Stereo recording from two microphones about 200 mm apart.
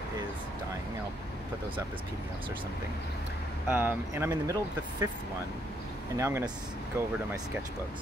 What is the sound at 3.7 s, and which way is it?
Speech, 10° right (ahead or behind).